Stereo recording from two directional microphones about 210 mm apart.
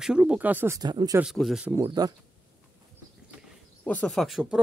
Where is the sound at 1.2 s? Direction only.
Centre (ahead or behind).